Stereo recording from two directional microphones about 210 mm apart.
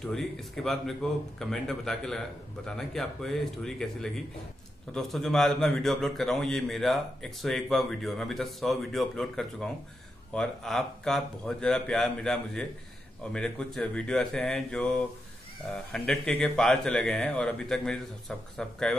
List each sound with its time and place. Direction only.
0.0 s a man's voice: centre (ahead or behind)